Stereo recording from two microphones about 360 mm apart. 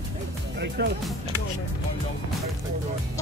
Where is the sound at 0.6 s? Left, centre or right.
Right.